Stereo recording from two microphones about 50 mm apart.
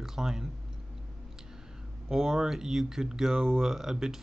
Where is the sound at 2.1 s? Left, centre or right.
Centre.